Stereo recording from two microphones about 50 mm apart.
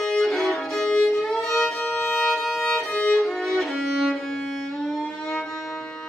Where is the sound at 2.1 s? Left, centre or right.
Centre.